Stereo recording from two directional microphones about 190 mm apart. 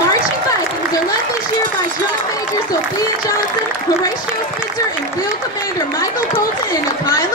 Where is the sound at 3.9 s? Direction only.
20° left (ahead or behind).